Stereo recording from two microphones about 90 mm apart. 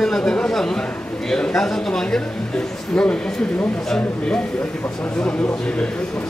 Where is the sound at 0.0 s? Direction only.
10° left (ahead or behind).